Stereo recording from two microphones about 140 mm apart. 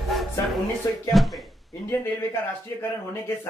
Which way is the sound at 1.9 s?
20° left (ahead or behind).